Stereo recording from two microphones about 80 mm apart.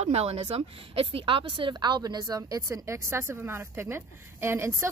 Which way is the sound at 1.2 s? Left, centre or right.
Right.